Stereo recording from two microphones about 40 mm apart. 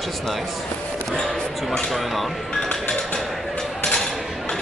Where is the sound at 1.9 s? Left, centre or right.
Centre.